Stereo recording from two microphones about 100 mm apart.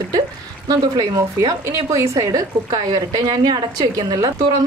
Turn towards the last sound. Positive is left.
turn(degrees=-40)  # may be behind; listen again after turning